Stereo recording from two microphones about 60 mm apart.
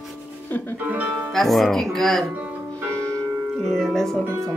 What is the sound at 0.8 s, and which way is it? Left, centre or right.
Speech, right.